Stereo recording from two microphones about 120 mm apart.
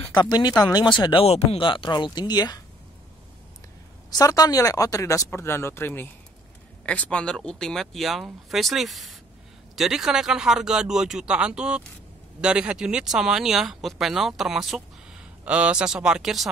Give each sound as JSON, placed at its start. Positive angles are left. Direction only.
{"t": 0.1, "sound": "speech", "side_deg": 35}
{"t": 4.1, "sound": "speech", "side_deg": 30}